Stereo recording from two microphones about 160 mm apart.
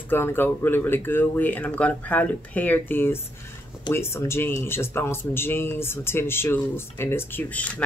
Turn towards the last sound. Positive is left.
turn(degrees=10)  # may be behind; listen again after turning